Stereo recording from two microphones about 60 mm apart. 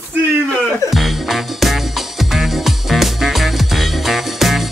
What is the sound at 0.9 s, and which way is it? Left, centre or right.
Music, centre.